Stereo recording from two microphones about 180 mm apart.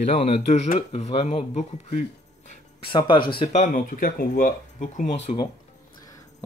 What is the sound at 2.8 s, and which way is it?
Speech, 25° left (ahead or behind).